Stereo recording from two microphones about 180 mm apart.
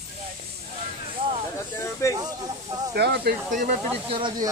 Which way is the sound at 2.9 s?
65° right (ahead or behind).